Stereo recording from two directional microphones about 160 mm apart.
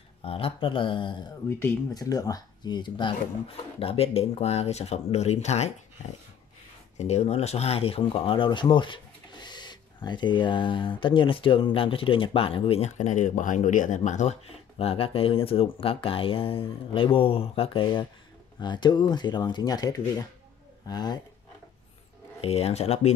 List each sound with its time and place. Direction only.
0.2 s speech: 35° left (ahead or behind)
7.0 s speech: 45° left (ahead or behind); by 21.2 s 25° left (ahead or behind)
22.4 s speech: 40° left (ahead or behind)